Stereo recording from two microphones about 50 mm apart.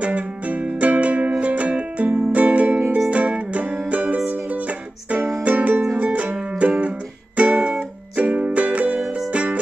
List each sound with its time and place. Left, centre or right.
0.0 s music: right
5.4 s music: right